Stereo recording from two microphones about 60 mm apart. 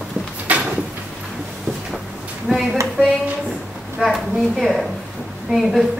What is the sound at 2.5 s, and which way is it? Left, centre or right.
Speech, centre.